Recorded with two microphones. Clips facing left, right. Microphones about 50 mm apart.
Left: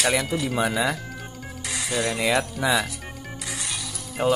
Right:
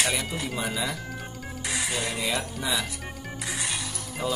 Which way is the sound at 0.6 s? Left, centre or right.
Left.